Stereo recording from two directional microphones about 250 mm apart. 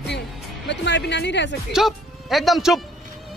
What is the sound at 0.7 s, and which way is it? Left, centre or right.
Speech, left.